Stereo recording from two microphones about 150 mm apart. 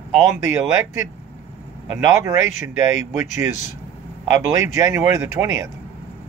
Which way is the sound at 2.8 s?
15° right (ahead or behind).